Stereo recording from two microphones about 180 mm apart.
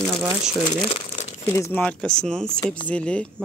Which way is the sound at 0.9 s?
40° left (ahead or behind).